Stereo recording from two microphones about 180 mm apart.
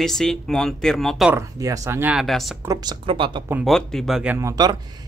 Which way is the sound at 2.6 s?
20° right (ahead or behind).